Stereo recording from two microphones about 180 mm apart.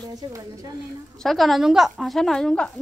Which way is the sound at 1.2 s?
Centre (ahead or behind).